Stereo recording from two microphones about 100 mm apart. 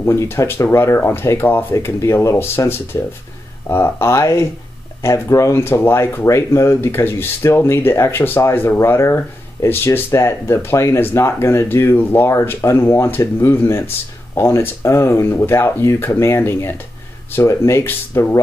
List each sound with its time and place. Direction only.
0.0 s speech: 25° left (ahead or behind)